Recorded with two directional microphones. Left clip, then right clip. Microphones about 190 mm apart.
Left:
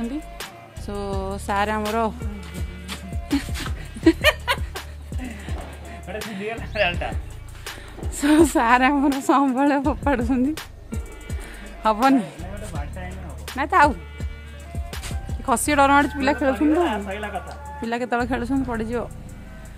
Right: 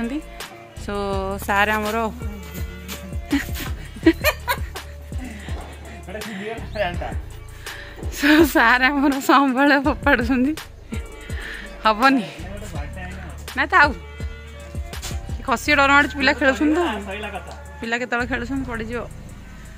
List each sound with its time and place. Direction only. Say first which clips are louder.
0.0 s speech: right 2 dB; centre (ahead or behind)
3.3 s music: right 2 dB; centre (ahead or behind)
6.1 s a woman's voice: even; centre (ahead or behind)
9.3 s music: right 4 dB; centre (ahead or behind)
15.4 s speech: right 1 dB; 20° left (ahead or behind)
17.8 s speech: right 1 dB; 20° left (ahead or behind)